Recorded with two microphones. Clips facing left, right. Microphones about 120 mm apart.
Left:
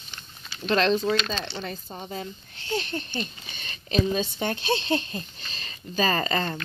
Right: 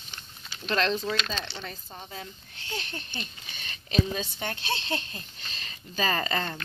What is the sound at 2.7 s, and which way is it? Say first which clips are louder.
Speech: left 8 dB; 5° right (ahead or behind).